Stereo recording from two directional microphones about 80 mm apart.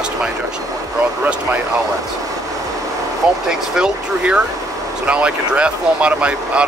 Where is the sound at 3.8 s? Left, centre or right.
Centre.